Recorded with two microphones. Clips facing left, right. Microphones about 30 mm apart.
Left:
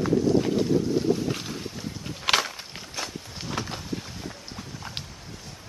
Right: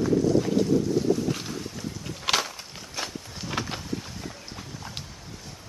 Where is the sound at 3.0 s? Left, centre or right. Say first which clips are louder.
Even; centre.